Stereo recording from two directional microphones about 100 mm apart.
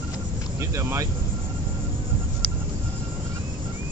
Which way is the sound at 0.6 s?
30° right (ahead or behind).